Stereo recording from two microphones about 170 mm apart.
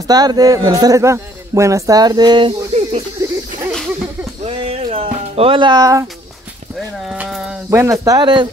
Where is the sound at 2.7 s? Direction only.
35° right (ahead or behind).